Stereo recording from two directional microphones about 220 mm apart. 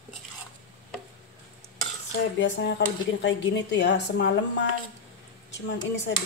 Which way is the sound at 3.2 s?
55° left (ahead or behind).